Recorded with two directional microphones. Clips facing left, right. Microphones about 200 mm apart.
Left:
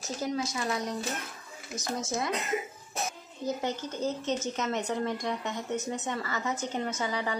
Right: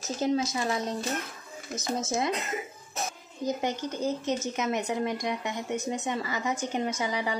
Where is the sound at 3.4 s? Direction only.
15° right (ahead or behind).